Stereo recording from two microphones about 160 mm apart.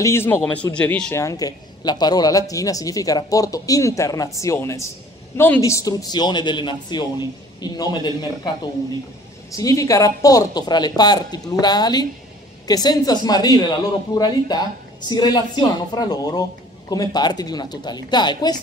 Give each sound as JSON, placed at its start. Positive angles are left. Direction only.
{"t": 0.0, "sound": "a man's voice", "side_deg": 15}
{"t": 1.1, "sound": "speech", "side_deg": 20}